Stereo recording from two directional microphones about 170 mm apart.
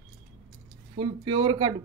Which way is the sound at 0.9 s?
30° right (ahead or behind).